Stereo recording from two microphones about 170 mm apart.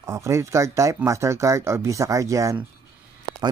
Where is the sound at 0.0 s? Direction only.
15° right (ahead or behind).